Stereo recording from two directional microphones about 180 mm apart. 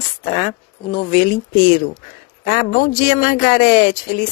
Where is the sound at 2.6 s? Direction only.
55° left (ahead or behind).